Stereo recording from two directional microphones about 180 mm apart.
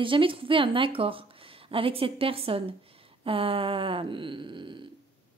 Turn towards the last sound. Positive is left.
turn(degrees=-25)  # may be behind; listen again after turning